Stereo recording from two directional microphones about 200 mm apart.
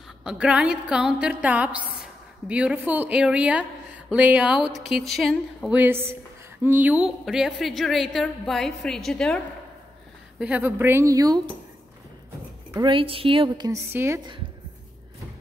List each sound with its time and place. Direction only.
0.2 s a woman's voice: 5° right (ahead or behind)
10.4 s a woman's voice: 10° right (ahead or behind)
12.7 s a woman's voice: 25° right (ahead or behind)